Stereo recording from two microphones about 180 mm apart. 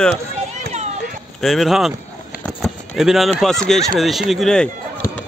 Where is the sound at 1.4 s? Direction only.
Centre (ahead or behind).